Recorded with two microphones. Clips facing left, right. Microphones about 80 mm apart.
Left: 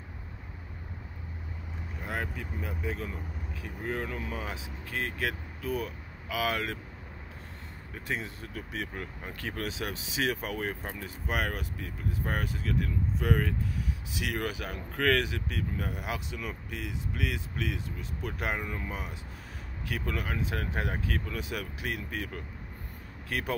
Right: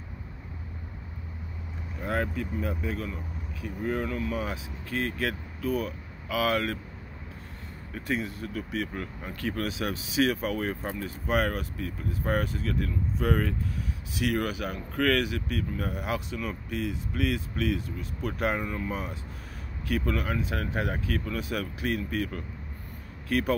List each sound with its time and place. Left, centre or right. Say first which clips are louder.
2.0 s speech: right 6 dB; centre
7.9 s speech: right 5 dB; centre